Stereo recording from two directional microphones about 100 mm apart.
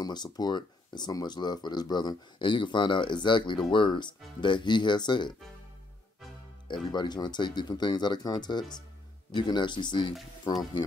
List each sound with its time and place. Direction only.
0.0 s speech: 45° left (ahead or behind)
6.7 s speech: 50° left (ahead or behind)